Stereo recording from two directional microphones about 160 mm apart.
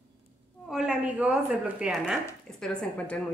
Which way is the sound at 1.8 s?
5° right (ahead or behind).